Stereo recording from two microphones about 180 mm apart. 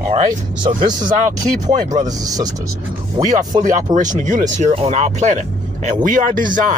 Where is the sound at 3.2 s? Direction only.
45° right (ahead or behind).